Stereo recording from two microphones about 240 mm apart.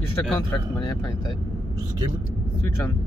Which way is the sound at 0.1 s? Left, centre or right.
Centre.